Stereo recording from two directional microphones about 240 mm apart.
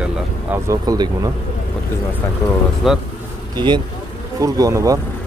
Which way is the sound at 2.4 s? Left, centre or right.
Centre.